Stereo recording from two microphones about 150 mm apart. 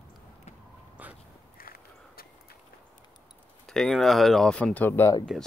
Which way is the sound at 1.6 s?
80° left.